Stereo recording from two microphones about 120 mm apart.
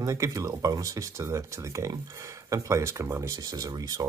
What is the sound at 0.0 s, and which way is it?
Speech, 25° right (ahead or behind).